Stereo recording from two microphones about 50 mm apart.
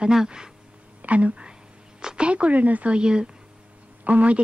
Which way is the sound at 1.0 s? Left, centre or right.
Right.